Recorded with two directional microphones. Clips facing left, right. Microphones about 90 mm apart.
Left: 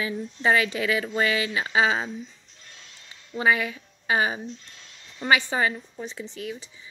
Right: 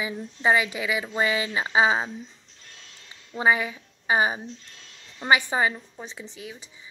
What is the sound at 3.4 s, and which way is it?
A woman's voice, 20° right (ahead or behind).